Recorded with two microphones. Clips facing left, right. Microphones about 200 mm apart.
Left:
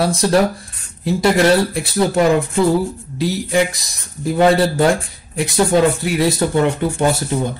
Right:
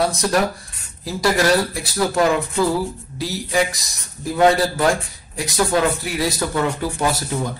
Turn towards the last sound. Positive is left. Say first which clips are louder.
# left 5 dB
turn(degrees=25)  # may be behind; listen again after turning